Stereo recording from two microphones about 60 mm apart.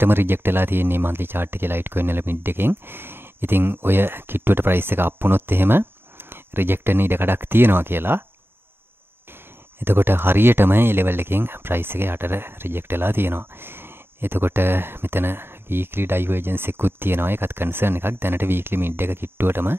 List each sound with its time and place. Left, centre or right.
0.0 s speech: right
9.8 s speech: right